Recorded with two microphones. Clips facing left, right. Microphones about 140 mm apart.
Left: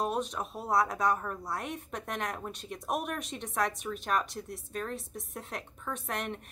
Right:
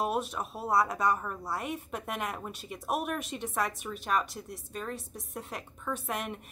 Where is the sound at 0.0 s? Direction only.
5° right (ahead or behind).